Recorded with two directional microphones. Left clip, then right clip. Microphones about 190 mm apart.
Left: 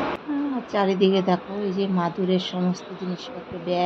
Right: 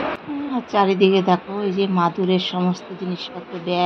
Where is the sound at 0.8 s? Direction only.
5° right (ahead or behind).